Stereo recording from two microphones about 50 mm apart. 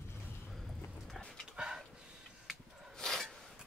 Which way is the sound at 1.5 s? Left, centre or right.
Centre.